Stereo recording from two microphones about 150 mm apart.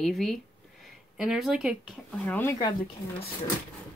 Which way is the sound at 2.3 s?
15° left (ahead or behind).